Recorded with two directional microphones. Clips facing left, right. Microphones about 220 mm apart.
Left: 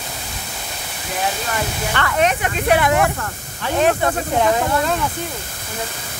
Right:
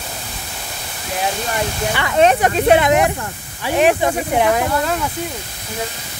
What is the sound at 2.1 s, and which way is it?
Speech, 35° right (ahead or behind).